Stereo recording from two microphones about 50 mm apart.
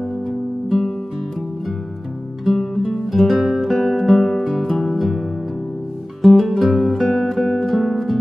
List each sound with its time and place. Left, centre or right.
0.7 s music: centre
2.4 s music: centre
6.2 s music: centre